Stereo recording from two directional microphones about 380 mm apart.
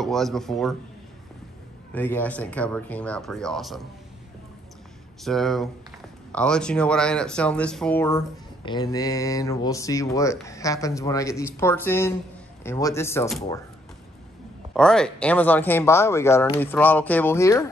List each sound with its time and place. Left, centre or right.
0.0 s speech: centre
2.0 s speech: centre
5.2 s speech: centre
14.7 s speech: centre